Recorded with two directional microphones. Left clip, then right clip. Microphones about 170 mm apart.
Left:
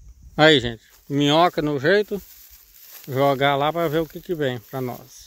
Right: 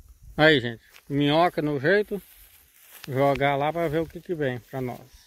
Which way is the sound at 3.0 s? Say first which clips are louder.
Left 3 dB; 20° left (ahead or behind).